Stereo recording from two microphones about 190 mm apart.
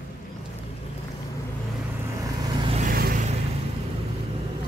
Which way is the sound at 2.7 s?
50° right (ahead or behind).